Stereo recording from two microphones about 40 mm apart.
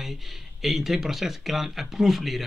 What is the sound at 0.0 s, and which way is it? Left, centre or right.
Speech, centre.